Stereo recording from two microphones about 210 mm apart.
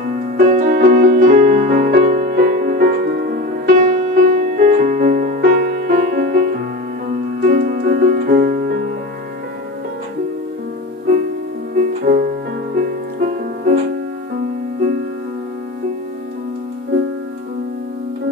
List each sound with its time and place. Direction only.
0.0 s music: 45° right (ahead or behind)
3.8 s music: 35° right (ahead or behind)
11.8 s music: 40° right (ahead or behind)